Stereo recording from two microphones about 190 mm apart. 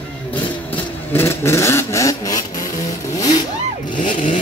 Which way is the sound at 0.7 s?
10° left (ahead or behind).